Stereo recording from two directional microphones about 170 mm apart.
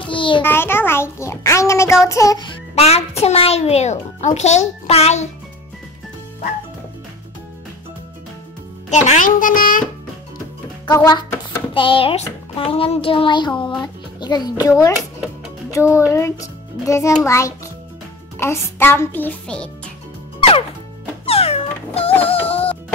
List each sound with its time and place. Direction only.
0.0 s a sound: 30° left (ahead or behind)
0.4 s a child's voice: 15° left (ahead or behind)
2.7 s a child's voice: 40° left (ahead or behind)
8.9 s a child's voice: 45° left (ahead or behind)
10.9 s a child's voice: 20° left (ahead or behind)
11.7 s a child's voice: 30° left (ahead or behind); by 19.7 s 5° left (ahead or behind)
20.3 s music: 35° left (ahead or behind)
21.3 s cat: 35° left (ahead or behind)